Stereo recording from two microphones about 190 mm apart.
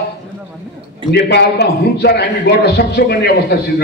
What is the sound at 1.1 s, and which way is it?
A man's voice, 60° left (ahead or behind).